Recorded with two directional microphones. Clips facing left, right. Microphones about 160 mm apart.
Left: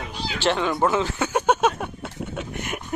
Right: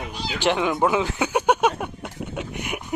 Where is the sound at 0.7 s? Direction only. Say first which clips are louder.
Right 1 dB; 10° right (ahead or behind).